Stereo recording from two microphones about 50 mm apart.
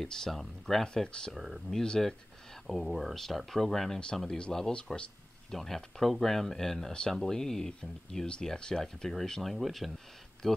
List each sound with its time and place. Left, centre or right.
0.0 s speech: centre
0.8 s speech: centre
1.3 s speech: centre